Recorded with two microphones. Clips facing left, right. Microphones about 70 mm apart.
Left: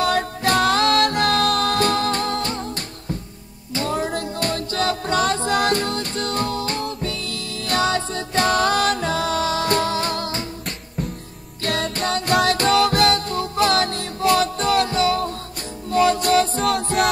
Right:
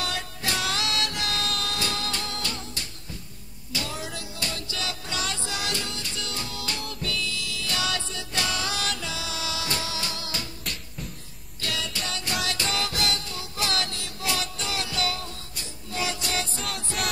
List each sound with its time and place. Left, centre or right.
0.0 s music: left
11.6 s music: left